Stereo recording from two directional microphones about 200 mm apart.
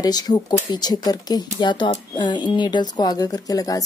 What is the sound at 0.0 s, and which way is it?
A woman's voice, 20° left (ahead or behind).